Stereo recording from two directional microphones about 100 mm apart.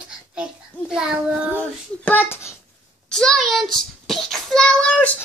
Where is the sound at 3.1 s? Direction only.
5° left (ahead or behind).